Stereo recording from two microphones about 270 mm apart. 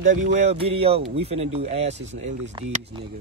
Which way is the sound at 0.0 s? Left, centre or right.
Right.